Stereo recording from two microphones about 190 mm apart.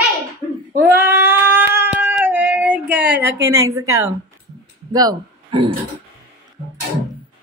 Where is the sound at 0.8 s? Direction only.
10° right (ahead or behind).